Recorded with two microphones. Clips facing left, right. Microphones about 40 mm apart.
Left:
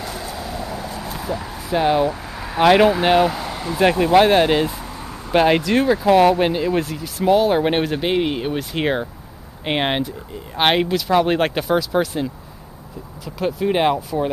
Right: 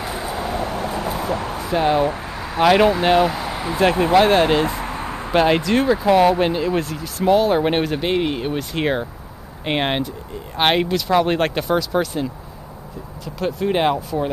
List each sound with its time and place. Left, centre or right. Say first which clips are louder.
0.0 s vehicle: right 3 dB; right
0.4 s a sound: right 4 dB; right
1.7 s speech: left 1 dB; centre
2.0 s speech: right 1 dB; right
2.4 s speech: left 1 dB; centre
3.5 s vehicle: right 2 dB; centre
4.1 s speech: left 1 dB; centre
4.6 s a sound: right 5 dB; right
5.3 s speech: left 1 dB; centre